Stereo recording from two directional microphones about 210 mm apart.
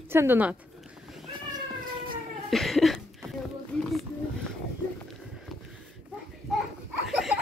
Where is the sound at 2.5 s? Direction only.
Centre (ahead or behind).